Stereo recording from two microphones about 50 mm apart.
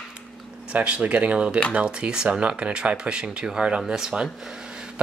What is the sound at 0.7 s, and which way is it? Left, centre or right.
Speech, right.